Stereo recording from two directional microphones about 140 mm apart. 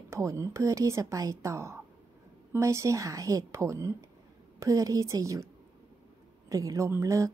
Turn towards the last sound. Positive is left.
turn(degrees=-20)  # may be behind; listen again after turning